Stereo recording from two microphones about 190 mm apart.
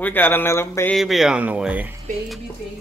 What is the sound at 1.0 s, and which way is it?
Speech, centre (ahead or behind).